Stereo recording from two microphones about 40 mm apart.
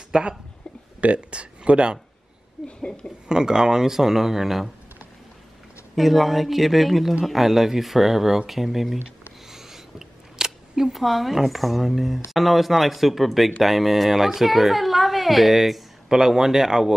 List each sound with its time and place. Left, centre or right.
0.1 s speech: right
1.0 s speech: right
3.3 s speech: centre
5.9 s speech: centre
9.5 s a sound: centre
10.9 s a woman's voice: centre